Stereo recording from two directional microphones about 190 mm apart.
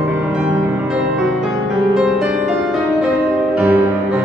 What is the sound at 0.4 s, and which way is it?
Music, 10° right (ahead or behind).